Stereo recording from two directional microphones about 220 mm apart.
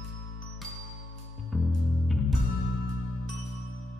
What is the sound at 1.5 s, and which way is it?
Music, centre (ahead or behind).